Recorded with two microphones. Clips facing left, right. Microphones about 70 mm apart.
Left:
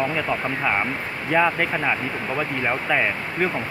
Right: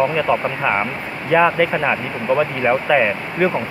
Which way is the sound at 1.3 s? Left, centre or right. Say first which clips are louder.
Right 5 dB; centre.